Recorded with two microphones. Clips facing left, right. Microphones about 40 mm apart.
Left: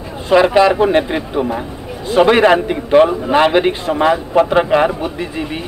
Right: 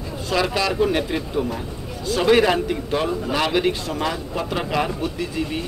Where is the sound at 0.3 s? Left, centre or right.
Left.